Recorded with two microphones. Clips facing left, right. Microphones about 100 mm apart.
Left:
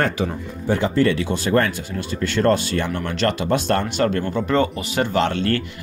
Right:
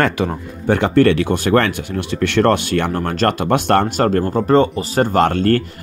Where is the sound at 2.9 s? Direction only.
40° right (ahead or behind); by 4.1 s 55° right (ahead or behind).